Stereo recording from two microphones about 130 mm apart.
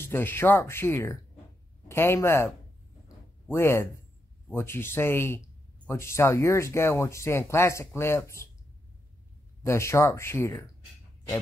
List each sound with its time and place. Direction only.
0.0 s speech: 15° left (ahead or behind)
9.6 s speech: 20° left (ahead or behind)